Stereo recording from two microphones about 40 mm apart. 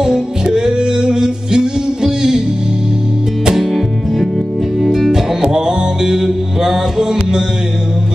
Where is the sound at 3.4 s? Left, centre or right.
Centre.